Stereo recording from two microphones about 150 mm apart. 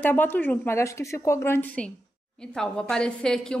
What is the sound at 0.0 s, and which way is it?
A woman's voice, 15° left (ahead or behind).